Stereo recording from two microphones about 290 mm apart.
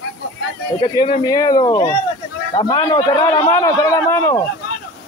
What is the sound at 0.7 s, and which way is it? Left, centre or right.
Speech, centre.